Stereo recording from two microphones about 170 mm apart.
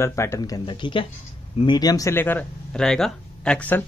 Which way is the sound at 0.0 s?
15° left (ahead or behind).